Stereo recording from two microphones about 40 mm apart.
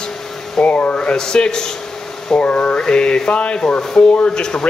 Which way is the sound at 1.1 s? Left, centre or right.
Centre.